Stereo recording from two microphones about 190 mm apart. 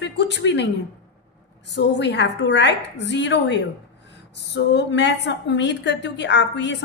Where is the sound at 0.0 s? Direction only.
65° left (ahead or behind).